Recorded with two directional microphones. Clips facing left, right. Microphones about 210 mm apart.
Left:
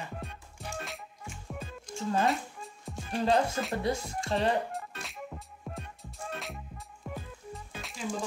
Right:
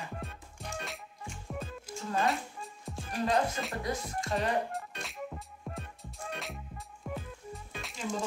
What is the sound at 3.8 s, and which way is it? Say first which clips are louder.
Speech: left 3 dB; 30° left (ahead or behind).